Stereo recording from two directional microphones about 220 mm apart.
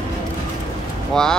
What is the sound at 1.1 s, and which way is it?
Speech, centre (ahead or behind).